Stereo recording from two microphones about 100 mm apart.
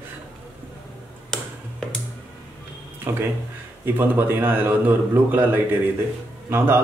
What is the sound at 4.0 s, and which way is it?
A man's voice, 20° right (ahead or behind).